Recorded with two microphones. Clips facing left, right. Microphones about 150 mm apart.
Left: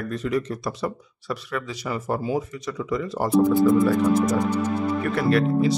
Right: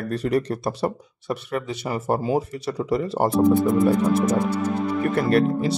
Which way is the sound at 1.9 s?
30° right (ahead or behind).